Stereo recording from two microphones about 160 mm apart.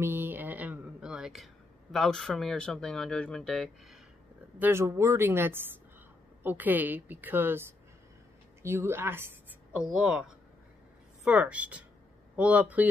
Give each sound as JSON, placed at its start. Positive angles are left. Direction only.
{"t": 0.0, "sound": "speech", "side_deg": -15}
{"t": 4.6, "sound": "a woman's voice", "side_deg": -15}
{"t": 8.6, "sound": "a woman's voice", "side_deg": -15}